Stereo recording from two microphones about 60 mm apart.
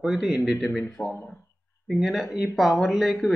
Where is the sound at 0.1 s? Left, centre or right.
Centre.